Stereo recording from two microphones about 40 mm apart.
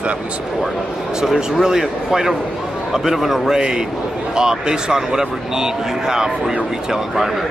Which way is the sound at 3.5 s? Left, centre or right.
Centre.